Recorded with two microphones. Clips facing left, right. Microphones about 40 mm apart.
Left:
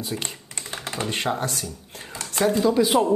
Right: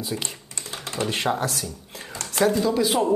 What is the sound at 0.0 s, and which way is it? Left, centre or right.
Speech, centre.